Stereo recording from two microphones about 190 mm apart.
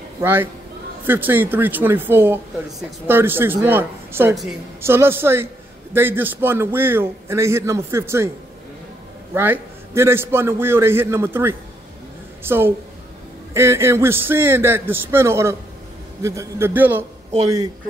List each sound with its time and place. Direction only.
0.2 s speech: 10° right (ahead or behind)
9.3 s speech: 10° right (ahead or behind)